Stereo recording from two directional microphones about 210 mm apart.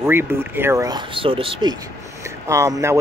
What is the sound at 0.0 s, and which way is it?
Speech, 10° right (ahead or behind).